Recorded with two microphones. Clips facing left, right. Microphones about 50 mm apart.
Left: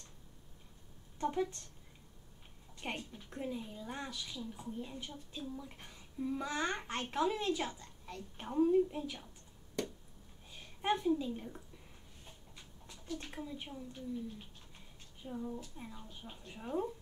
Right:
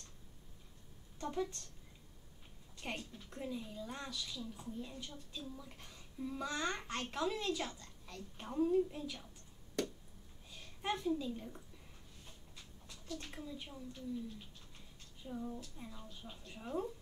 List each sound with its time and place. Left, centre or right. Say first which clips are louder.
1.2 s a child's voice: left 4 dB; left
2.8 s a child's voice: left 2 dB; left
10.5 s a woman's voice: left 5 dB; left
12.5 s speech: left 1 dB; left
15.2 s a woman's voice: left 2 dB; centre